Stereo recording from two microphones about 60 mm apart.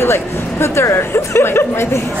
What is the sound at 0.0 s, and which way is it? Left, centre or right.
Speech, left.